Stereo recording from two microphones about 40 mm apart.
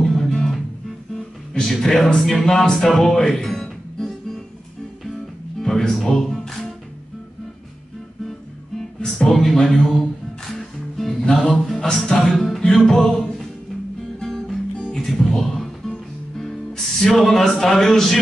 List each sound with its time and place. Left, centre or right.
0.0 s music: centre
1.5 s speech: centre
2.4 s music: centre
5.7 s music: centre
9.0 s a sound: centre
10.4 s music: centre
14.2 s music: centre
17.1 s speech: centre